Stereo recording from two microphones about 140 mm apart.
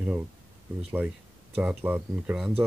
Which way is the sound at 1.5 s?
15° right (ahead or behind).